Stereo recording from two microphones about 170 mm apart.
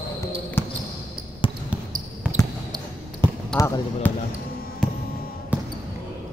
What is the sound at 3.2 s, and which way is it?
Basketball bounce, 30° right (ahead or behind).